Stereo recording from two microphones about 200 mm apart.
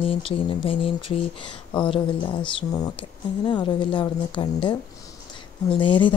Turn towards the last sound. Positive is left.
turn(degrees=25)  # may be behind; listen again after turning